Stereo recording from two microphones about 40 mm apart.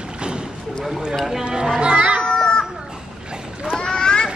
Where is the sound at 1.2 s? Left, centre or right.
Centre.